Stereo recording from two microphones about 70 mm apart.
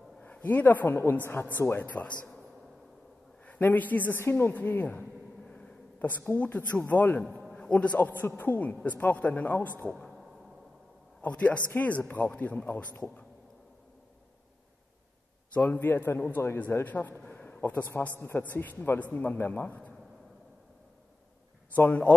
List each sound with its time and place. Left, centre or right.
0.2 s a sound: left
0.8 s speech: left; by 2.4 s centre
3.4 s a man's voice: left
4.6 s a man's voice: left
11.1 s a man's voice: left
15.5 s a man's voice: left
17.3 s a sound: centre
17.6 s a man's voice: left
21.7 s a man's voice: left